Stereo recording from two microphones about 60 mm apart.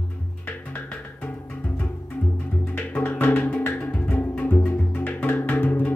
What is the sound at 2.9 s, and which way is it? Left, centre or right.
Music, left.